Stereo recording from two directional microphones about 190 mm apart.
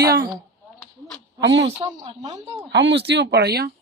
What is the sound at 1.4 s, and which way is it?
Speech, 65° right (ahead or behind).